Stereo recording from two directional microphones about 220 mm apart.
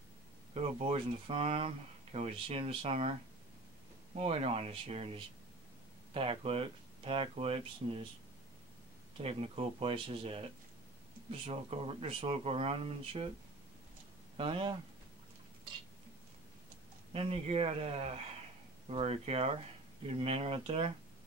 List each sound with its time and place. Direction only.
0.6 s speech: 30° right (ahead or behind)
4.2 s speech: 25° right (ahead or behind)
9.1 s speech: 25° right (ahead or behind)
11.4 s speech: 25° right (ahead or behind)
14.3 s speech: 25° right (ahead or behind)
17.1 s speech: 25° right (ahead or behind)